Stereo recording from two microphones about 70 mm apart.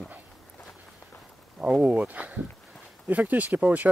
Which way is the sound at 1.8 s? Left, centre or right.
Right.